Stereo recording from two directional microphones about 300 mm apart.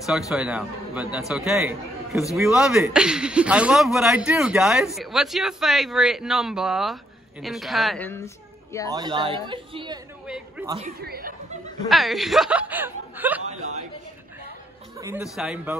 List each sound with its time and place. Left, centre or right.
0.3 s a man's voice: centre
8.9 s speech: centre
10.2 s a man's voice: centre
11.0 s speech: right
11.9 s a man's voice: centre
15.0 s a man's voice: centre